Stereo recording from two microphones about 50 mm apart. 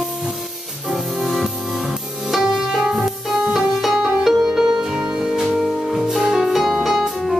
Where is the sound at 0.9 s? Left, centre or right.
Centre.